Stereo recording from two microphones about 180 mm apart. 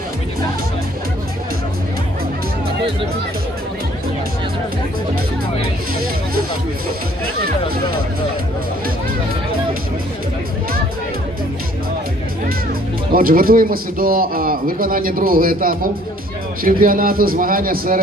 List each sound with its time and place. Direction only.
13.1 s speech: 55° right (ahead or behind)